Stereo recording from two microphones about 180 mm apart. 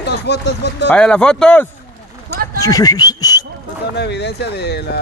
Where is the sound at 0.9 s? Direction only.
5° left (ahead or behind).